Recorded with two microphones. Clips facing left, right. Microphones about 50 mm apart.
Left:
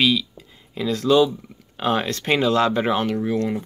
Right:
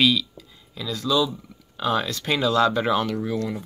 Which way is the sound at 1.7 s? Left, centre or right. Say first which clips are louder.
Left 2 dB; left.